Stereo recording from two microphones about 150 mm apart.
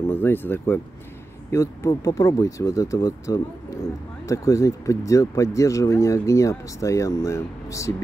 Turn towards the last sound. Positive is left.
turn(degrees=20)  # may be behind; listen again after turning